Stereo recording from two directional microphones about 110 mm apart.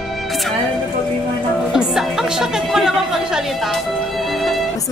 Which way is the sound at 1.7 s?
5° right (ahead or behind).